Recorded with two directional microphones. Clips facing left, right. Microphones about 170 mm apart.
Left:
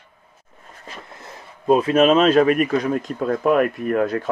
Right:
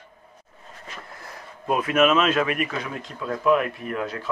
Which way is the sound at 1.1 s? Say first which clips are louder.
Left 1 dB; 25° left (ahead or behind).